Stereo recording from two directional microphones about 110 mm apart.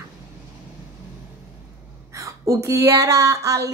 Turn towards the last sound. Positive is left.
turn(degrees=-30)  # may be behind; listen again after turning